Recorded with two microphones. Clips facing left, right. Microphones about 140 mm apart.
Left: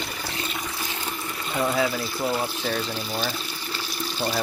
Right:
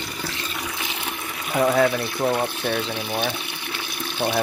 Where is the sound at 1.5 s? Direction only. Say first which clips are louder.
Right 5 dB; 60° right (ahead or behind).